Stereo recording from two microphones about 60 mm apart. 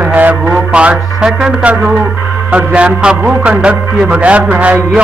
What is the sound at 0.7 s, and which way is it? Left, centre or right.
Music, centre.